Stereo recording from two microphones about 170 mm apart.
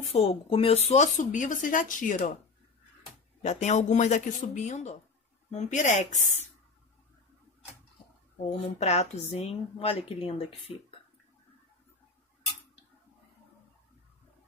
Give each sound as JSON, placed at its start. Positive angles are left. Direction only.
{"t": 0.1, "sound": "speech", "side_deg": 35}
{"t": 3.4, "sound": "speech", "side_deg": 40}
{"t": 8.5, "sound": "a woman's voice", "side_deg": 40}